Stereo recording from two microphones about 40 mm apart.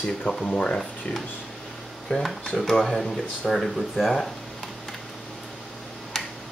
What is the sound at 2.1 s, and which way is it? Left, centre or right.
Speech, centre.